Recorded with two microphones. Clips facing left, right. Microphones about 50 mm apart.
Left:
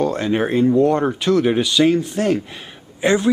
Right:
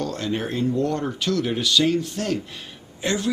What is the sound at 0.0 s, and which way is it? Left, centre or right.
Speech, left.